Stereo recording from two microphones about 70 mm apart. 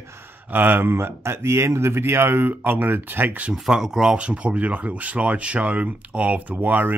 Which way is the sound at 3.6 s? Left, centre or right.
Centre.